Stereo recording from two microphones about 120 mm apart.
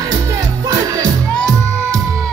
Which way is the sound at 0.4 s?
30° right (ahead or behind).